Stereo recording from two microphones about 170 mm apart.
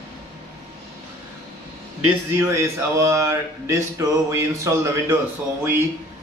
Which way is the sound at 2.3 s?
15° right (ahead or behind).